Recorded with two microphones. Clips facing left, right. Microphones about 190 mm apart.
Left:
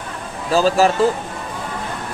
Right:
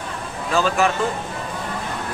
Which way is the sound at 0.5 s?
35° left (ahead or behind).